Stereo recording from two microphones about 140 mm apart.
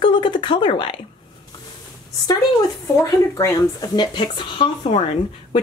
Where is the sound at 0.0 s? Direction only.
35° left (ahead or behind).